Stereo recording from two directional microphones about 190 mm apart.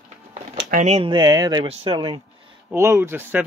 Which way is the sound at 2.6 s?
15° right (ahead or behind).